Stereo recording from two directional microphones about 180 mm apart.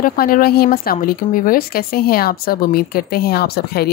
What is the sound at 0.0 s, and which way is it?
Speech, 55° left (ahead or behind).